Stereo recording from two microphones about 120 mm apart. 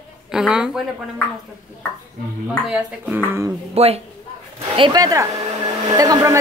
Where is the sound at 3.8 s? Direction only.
60° right (ahead or behind).